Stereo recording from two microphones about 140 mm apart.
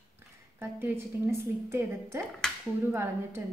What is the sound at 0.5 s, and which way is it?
A woman's voice, 15° right (ahead or behind).